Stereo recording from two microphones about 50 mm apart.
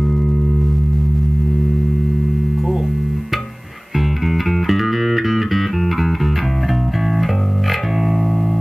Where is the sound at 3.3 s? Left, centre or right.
Centre.